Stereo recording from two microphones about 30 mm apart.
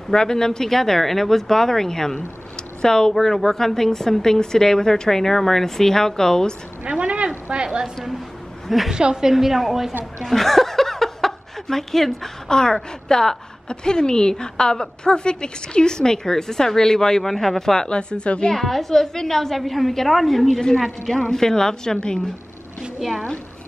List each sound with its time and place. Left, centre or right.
0.1 s a woman's voice: left
0.7 s a woman's voice: centre
5.2 s a woman's voice: centre
6.8 s a sound: right
7.5 s a sound: right
8.6 s a woman's voice: centre
10.3 s chuckle: centre
11.7 s a woman's voice: centre
12.4 s a woman's voice: left
17.8 s speech: left
18.5 s a woman's voice: centre
21.2 s a woman's voice: centre